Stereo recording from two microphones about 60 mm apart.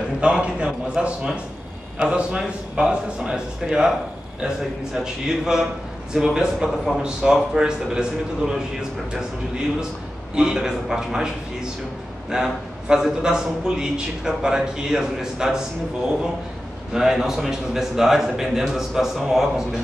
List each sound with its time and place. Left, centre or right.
0.2 s a man's voice: centre
10.3 s a man's voice: centre
16.9 s a man's voice: centre